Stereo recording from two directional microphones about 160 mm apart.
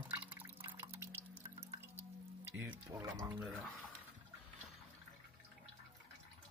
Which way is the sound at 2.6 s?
10° right (ahead or behind).